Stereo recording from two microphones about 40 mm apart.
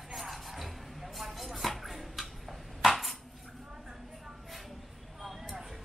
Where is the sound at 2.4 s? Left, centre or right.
Centre.